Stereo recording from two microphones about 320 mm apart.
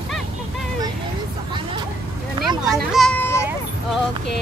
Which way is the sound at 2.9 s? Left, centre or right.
Centre.